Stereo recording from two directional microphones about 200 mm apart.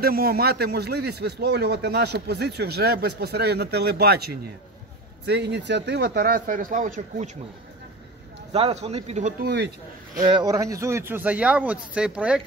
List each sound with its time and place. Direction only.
0.0 s speech: 50° right (ahead or behind)
8.5 s speech: 30° right (ahead or behind)
10.2 s speech: 20° right (ahead or behind)